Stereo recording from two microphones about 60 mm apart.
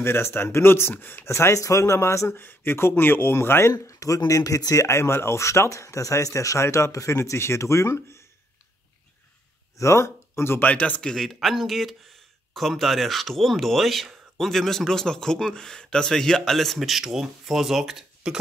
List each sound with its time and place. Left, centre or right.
0.0 s speech: left
0.9 s speech: left
1.2 s speech: left
3.8 s speech: left
4.8 s speech: left
9.8 s speech: left
10.6 s speech: left
11.0 s a man's voice: centre